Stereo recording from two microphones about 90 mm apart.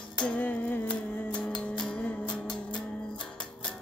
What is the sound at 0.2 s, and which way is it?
Music, 15° left (ahead or behind).